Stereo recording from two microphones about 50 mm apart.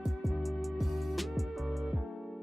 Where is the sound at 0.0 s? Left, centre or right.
Centre.